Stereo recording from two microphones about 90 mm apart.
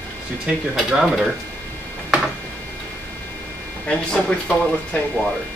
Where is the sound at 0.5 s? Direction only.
5° right (ahead or behind).